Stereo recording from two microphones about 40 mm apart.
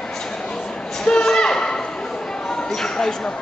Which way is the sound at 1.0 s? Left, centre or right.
Centre.